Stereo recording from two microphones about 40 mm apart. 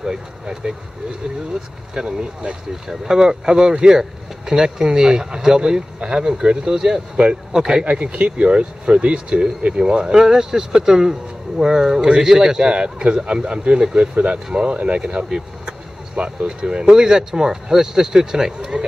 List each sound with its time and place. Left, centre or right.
0.0 s speech: centre
2.0 s speech: right
8.0 s speech: right